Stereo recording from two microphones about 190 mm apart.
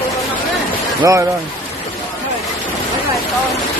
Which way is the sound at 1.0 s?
15° right (ahead or behind).